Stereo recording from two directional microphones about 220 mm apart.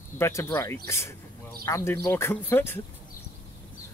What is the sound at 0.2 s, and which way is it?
Speech, 10° left (ahead or behind).